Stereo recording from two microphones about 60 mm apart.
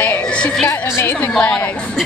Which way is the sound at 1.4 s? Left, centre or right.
Centre.